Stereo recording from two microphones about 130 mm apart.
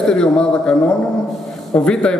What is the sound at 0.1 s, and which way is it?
Speech, 5° left (ahead or behind).